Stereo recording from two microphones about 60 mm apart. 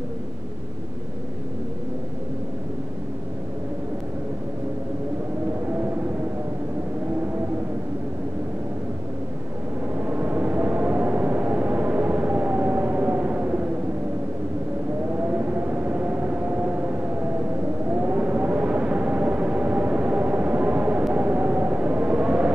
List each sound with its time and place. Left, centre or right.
9.9 s vehicle: right
15.1 s a sound: right
17.8 s civil defense siren: right
21.1 s vehicle: right